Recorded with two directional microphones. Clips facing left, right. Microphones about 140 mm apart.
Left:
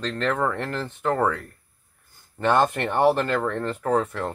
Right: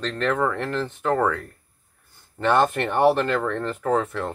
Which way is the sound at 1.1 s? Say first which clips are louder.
Right 3 dB; 25° left (ahead or behind).